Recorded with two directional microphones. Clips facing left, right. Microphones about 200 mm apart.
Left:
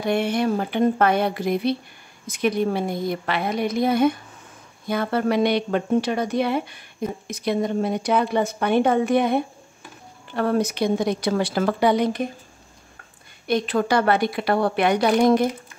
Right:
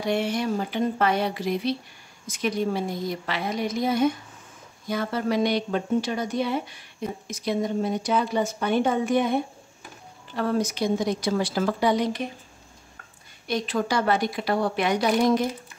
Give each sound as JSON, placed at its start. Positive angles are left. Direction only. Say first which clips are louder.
{"t": 0.0, "sound": "speech", "louder": "left 4 dB", "side_deg": 55}
{"t": 13.5, "sound": "speech", "louder": "left 5 dB", "side_deg": 60}